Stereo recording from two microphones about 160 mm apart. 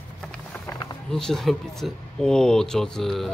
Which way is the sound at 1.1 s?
5° left (ahead or behind).